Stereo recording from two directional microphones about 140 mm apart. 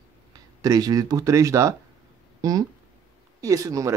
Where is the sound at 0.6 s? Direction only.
25° right (ahead or behind).